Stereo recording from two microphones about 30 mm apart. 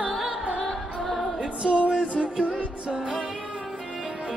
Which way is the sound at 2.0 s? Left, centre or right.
Right.